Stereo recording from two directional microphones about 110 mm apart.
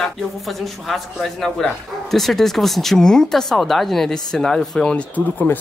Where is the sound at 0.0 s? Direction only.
Centre (ahead or behind).